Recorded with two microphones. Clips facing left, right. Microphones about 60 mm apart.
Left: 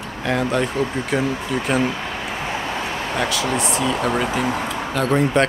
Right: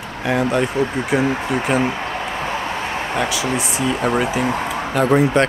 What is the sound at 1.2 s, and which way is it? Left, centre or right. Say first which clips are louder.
Speech: right 3 dB; right.